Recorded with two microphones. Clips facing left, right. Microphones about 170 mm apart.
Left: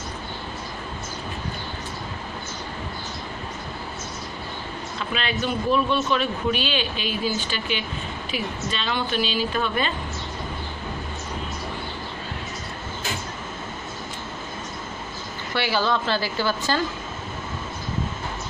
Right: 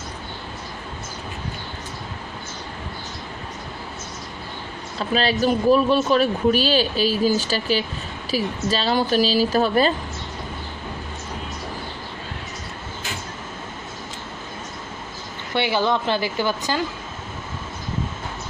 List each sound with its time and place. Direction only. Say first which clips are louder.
4.9 s speech: right 7 dB; 35° right (ahead or behind)
15.5 s speech: right 3 dB; 20° right (ahead or behind)